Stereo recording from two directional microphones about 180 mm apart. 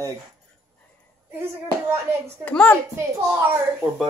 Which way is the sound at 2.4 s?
10° left (ahead or behind).